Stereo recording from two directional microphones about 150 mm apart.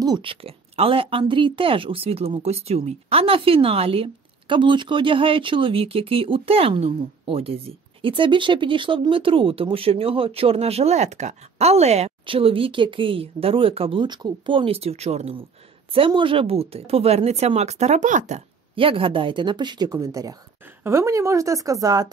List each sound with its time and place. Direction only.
0.0 s speech: 30° right (ahead or behind)